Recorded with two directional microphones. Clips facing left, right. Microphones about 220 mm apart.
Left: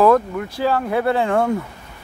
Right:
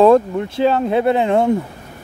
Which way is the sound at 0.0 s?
25° right (ahead or behind).